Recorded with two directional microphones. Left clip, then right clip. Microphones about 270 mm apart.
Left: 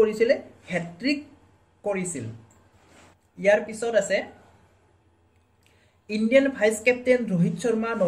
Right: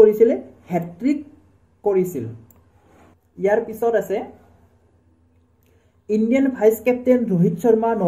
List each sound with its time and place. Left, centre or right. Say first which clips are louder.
0.0 s speech: right 7 dB; right
3.3 s speech: right 2 dB; centre
6.0 s speech: right 1 dB; right